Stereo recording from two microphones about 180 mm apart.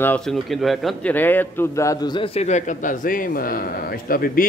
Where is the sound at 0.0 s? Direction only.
5° left (ahead or behind).